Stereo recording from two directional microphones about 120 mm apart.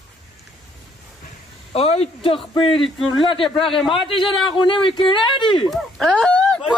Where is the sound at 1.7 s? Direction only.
55° left (ahead or behind).